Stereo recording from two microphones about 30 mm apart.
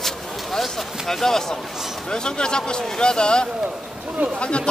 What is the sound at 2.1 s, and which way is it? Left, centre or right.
Speech, left.